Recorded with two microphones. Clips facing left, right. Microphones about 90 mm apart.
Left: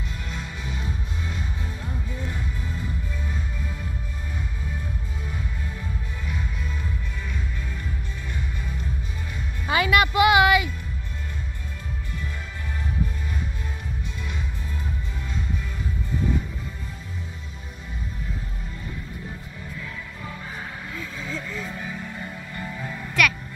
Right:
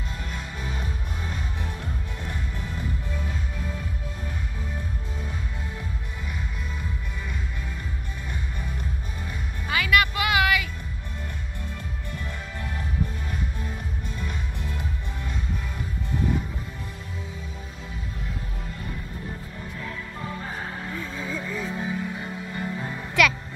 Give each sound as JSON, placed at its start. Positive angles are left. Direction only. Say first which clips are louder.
{"t": 9.7, "sound": "music", "louder": "left 2 dB", "side_deg": 25}
{"t": 20.9, "sound": "music", "louder": "even", "side_deg": -20}